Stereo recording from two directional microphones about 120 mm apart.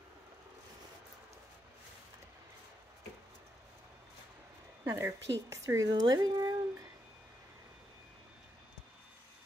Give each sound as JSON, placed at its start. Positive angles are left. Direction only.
{"t": 4.9, "sound": "speech", "side_deg": -25}